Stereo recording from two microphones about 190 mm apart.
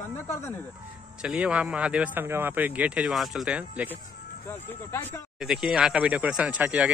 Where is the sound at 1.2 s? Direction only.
5° right (ahead or behind).